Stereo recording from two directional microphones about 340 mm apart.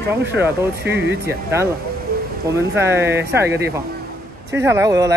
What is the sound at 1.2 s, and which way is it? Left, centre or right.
Speech, centre.